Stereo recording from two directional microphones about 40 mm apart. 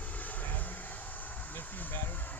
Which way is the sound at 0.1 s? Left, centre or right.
Left.